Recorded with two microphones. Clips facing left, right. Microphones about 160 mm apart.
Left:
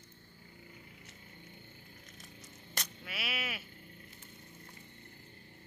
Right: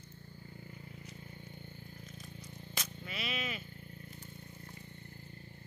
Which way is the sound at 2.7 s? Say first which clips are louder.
Right 1 dB; 5° left (ahead or behind).